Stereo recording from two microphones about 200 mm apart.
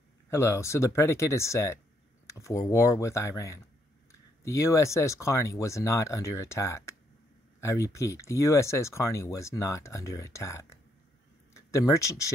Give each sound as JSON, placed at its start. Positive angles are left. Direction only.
{"t": 0.3, "sound": "speech", "side_deg": 15}